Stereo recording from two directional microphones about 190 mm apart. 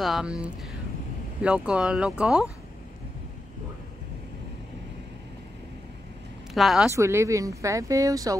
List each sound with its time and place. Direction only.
0.0 s speech: 5° right (ahead or behind)
6.5 s speech: centre (ahead or behind)
7.0 s speech: 15° right (ahead or behind)